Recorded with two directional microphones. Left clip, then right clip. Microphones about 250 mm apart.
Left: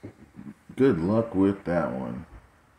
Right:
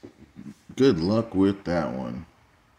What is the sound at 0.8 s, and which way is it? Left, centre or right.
Speech, right.